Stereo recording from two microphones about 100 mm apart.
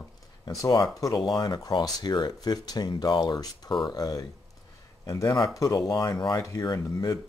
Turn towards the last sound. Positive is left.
turn(degrees=45)  # may be behind; listen again after turning